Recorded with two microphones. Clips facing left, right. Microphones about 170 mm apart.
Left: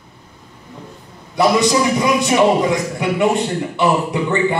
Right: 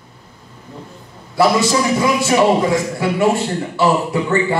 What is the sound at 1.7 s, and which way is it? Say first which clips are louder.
A man's voice: even; 20° left (ahead or behind).